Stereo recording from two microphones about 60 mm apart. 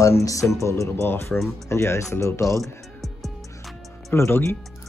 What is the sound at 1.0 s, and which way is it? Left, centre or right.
Speech, left.